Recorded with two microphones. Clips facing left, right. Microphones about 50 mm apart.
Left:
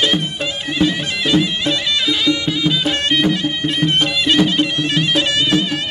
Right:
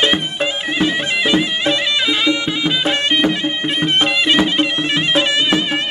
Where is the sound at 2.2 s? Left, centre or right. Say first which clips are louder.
Even; right.